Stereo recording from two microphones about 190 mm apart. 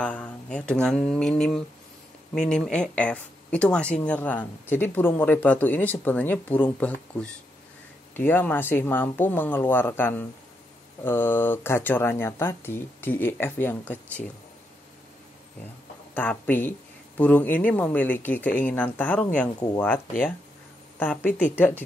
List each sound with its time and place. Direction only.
0.0 s speech: 5° left (ahead or behind)
16.2 s speech: 10° left (ahead or behind)
21.0 s speech: 10° left (ahead or behind)